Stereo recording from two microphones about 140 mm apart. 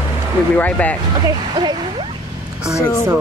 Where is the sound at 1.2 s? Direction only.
30° right (ahead or behind).